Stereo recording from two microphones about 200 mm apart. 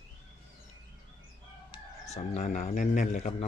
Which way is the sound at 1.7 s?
35° left (ahead or behind).